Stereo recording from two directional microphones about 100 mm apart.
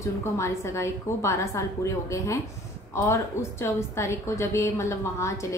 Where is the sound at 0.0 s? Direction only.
30° left (ahead or behind).